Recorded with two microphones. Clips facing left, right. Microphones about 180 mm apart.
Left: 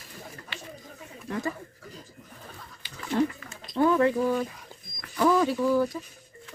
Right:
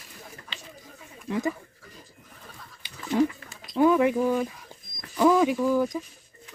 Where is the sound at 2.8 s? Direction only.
15° right (ahead or behind).